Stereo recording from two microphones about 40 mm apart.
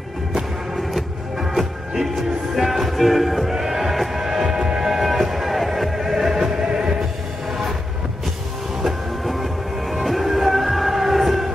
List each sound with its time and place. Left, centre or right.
0.7 s music: centre
4.4 s music: right
4.9 s music: centre
8.8 s music: centre